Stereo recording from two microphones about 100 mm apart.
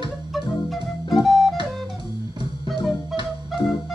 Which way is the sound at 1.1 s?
Centre (ahead or behind).